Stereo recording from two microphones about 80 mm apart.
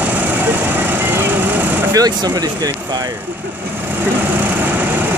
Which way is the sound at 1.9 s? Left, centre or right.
Right.